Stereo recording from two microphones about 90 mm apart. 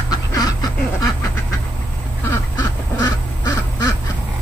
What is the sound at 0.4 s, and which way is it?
Duck, 45° left (ahead or behind).